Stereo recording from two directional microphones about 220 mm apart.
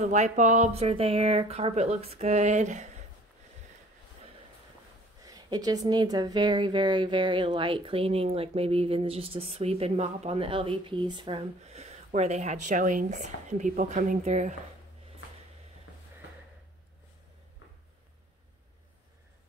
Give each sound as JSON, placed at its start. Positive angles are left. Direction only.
{"t": 0.0, "sound": "speech", "side_deg": -30}
{"t": 5.2, "sound": "speech", "side_deg": -15}